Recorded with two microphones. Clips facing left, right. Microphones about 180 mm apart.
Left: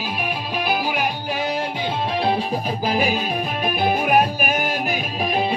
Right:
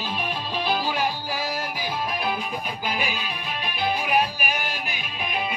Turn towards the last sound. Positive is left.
turn(degrees=35)  # may be behind; listen again after turning